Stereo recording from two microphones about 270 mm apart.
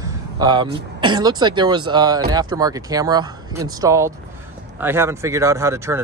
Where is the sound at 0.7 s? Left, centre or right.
Centre.